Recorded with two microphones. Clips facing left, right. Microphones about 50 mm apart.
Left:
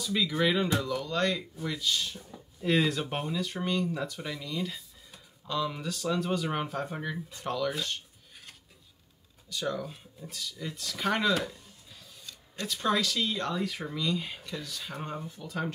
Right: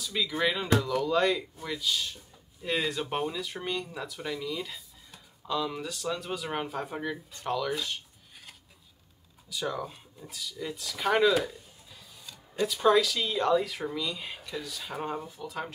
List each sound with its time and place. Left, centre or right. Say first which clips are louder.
0.0 s speech: left 1 dB; centre
9.5 s speech: even; centre